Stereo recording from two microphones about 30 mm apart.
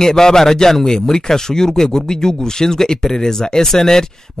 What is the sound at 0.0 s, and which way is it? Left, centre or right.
A man's voice, centre.